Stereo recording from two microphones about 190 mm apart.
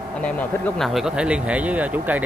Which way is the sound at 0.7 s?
Centre (ahead or behind).